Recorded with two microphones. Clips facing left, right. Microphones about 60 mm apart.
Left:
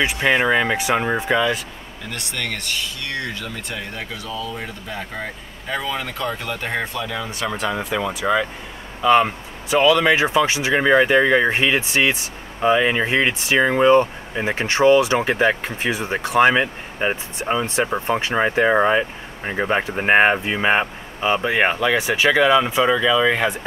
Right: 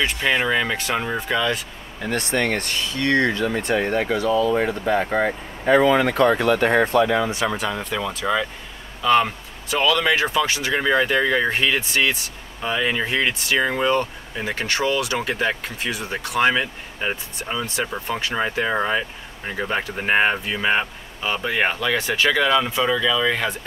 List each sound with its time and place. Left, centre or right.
0.0 s speech: centre
2.0 s speech: right
6.1 s speech: right
7.0 s speech: right
7.3 s speech: centre
7.7 s speech: centre